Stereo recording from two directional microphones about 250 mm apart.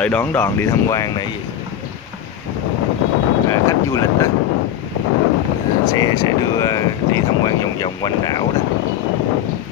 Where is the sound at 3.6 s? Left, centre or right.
Centre.